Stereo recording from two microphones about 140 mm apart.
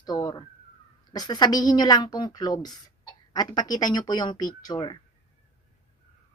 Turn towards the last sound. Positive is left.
turn(degrees=30)  # may be behind; listen again after turning